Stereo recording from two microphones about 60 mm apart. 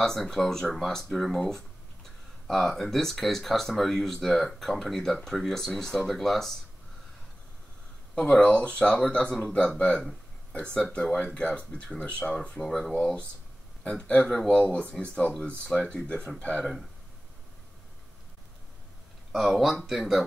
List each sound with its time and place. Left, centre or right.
0.0 s speech: centre
8.1 s speech: centre
13.8 s speech: centre
16.3 s speech: left
19.3 s speech: centre